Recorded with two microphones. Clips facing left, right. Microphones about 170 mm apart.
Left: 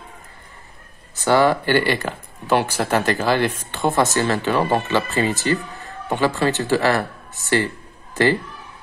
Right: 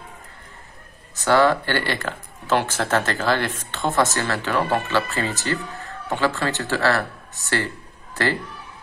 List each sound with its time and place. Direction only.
1.2 s speech: 15° left (ahead or behind)